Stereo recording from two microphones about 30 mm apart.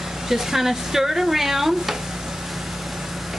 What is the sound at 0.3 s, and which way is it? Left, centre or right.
Speech, centre.